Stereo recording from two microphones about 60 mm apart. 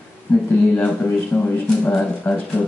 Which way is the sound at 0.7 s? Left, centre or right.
Left.